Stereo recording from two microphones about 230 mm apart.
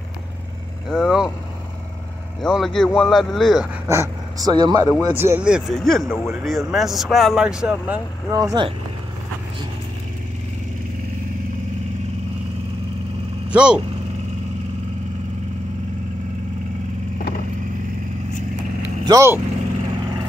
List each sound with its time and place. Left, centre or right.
0.8 s speech: centre
2.4 s speech: centre
3.8 s speech: centre
8.3 s speech: centre
13.5 s speech: centre
18.8 s vehicle: centre